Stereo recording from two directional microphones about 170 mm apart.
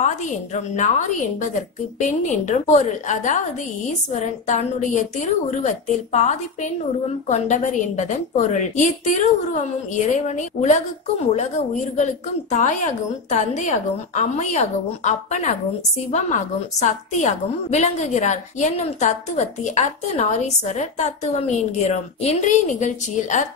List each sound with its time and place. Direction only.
0.0 s a woman's voice: 45° left (ahead or behind)
10.1 s a woman's voice: 45° left (ahead or behind)